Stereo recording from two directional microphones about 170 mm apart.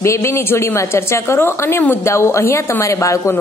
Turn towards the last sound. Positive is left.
turn(degrees=15)  # may be behind; listen again after turning